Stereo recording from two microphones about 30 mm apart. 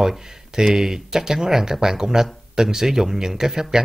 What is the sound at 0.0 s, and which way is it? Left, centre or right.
A man's voice, centre.